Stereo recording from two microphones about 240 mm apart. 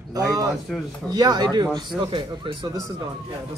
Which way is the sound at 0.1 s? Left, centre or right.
Centre.